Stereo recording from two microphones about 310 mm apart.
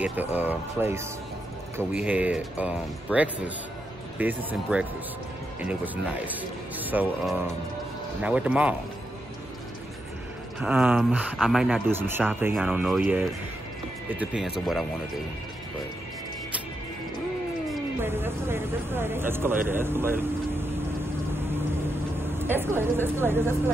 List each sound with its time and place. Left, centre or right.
0.0 s speech: centre
10.6 s speech: centre
17.6 s speech: centre
21.3 s vehicle: centre
22.2 s speech: centre